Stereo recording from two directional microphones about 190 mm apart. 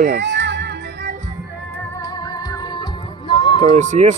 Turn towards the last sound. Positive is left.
turn(degrees=-40)  # may be behind; listen again after turning